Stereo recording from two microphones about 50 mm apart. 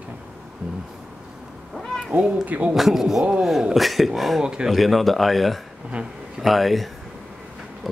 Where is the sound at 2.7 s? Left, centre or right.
Centre.